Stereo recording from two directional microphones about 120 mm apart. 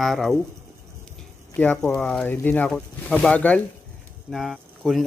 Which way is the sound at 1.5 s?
10° left (ahead or behind).